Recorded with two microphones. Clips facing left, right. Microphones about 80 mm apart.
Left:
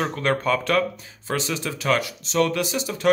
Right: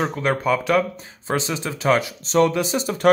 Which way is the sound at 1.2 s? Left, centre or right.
Right.